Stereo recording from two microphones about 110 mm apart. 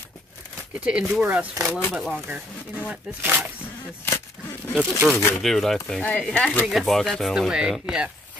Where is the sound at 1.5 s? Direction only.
30° right (ahead or behind).